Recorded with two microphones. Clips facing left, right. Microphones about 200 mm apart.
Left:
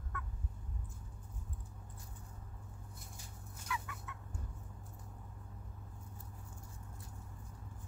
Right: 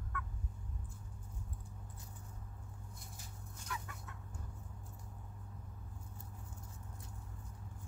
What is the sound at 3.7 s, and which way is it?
Chicken, 40° right (ahead or behind).